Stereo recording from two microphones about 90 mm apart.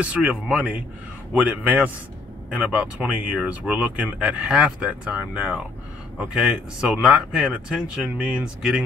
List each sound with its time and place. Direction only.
0.0 s speech: 15° right (ahead or behind)
6.9 s speech: 10° right (ahead or behind)